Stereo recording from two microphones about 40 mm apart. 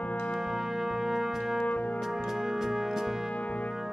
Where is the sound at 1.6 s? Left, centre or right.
Left.